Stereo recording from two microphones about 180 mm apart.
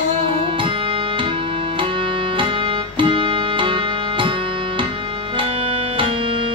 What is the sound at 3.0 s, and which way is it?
Music, 25° right (ahead or behind).